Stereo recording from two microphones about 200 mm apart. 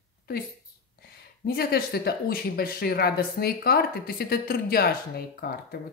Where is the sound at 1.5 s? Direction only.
50° left (ahead or behind).